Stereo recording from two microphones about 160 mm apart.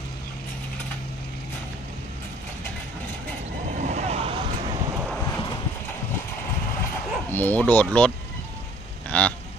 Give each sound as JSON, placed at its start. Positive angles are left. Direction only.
{"t": 3.7, "sound": "vehicle", "side_deg": -50}
{"t": 7.2, "sound": "speech", "side_deg": 10}
{"t": 9.1, "sound": "a sound", "side_deg": 10}